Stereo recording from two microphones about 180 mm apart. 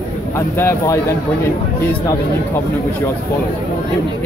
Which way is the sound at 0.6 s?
15° left (ahead or behind).